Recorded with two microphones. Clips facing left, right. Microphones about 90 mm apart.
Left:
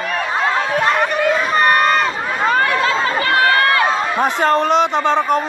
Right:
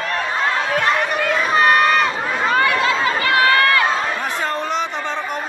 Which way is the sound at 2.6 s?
35° left (ahead or behind).